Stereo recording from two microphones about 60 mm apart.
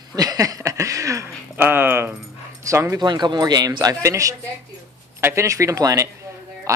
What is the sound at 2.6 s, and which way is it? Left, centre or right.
Speech, right.